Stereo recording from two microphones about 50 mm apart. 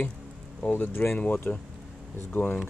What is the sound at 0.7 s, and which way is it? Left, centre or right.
Speech, left.